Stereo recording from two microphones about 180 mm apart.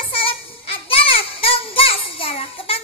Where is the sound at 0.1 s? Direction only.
30° left (ahead or behind).